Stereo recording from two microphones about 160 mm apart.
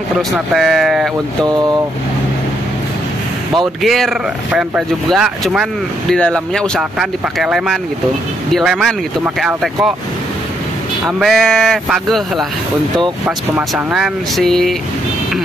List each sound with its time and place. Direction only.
0.3 s speech: centre (ahead or behind)
1.4 s speech: 25° right (ahead or behind)
3.5 s speech: centre (ahead or behind)
11.1 s speech: centre (ahead or behind)
13.6 s speech: 5° right (ahead or behind)